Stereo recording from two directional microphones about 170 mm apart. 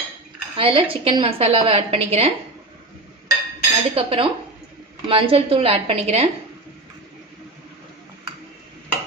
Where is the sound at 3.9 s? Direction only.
35° right (ahead or behind).